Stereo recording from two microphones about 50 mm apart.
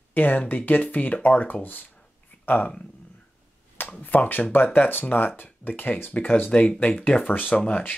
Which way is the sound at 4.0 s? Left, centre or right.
Left.